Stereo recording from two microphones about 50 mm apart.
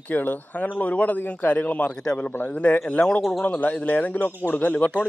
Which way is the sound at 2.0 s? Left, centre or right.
Centre.